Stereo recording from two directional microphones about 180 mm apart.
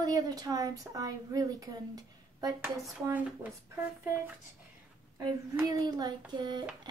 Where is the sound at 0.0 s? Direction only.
20° right (ahead or behind).